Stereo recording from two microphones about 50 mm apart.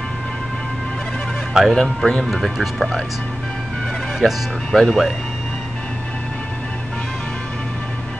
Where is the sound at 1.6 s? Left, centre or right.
Centre.